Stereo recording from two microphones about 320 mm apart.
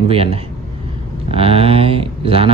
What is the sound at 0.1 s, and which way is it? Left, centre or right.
A man's voice, centre.